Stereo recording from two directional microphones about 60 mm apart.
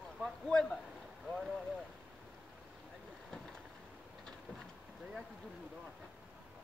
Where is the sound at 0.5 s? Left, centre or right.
Centre.